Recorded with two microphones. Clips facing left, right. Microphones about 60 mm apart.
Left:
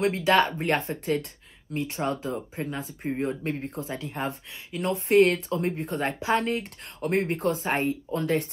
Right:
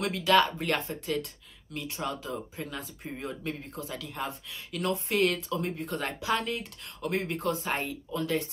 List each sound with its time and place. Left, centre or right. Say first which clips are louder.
0.0 s speech: left 2 dB; left
3.8 s speech: left 2 dB; left